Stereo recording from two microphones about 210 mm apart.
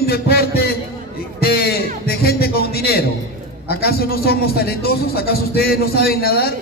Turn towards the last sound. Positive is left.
turn(degrees=45)  # may be behind; listen again after turning